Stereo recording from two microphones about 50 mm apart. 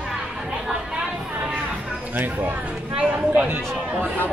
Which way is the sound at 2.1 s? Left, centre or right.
Right.